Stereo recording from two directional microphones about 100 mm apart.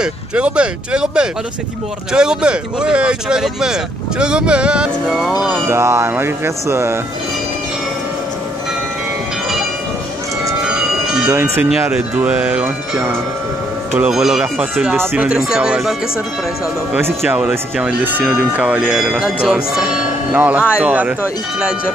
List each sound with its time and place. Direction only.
0.0 s speech: 10° right (ahead or behind)
5.7 s speech: 25° right (ahead or behind)
10.7 s bell: 5° right (ahead or behind)
11.2 s speech: 20° right (ahead or behind)
17.3 s speech: 10° right (ahead or behind)